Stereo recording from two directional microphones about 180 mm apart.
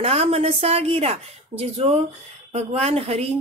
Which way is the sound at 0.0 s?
35° right (ahead or behind).